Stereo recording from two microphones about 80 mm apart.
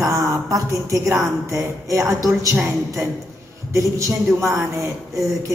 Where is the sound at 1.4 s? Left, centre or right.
Right.